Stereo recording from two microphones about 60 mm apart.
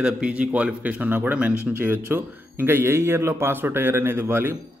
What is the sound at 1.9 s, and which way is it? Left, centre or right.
Speech, right.